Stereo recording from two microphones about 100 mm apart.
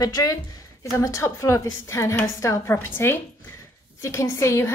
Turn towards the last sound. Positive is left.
turn(degrees=30)  # may be behind; listen again after turning